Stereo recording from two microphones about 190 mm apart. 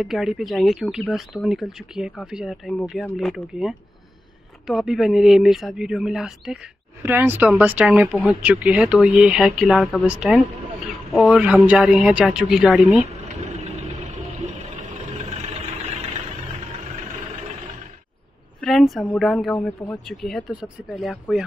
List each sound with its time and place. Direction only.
0.0 s speech: centre (ahead or behind)
13.5 s vehicle: 35° right (ahead or behind)
18.6 s speech: centre (ahead or behind)